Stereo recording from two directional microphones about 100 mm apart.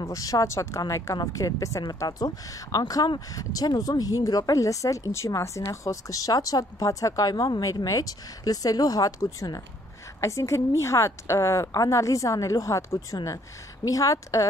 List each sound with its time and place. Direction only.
0.0 s a woman's voice: 35° left (ahead or behind)